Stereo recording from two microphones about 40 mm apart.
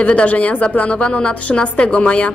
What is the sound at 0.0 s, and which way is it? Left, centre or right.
A woman's voice, left.